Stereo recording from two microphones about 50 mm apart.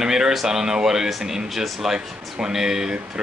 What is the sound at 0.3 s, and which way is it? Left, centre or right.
Speech, centre.